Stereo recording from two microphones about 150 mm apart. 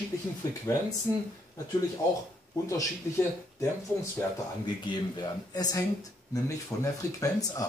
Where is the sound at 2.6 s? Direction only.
20° left (ahead or behind).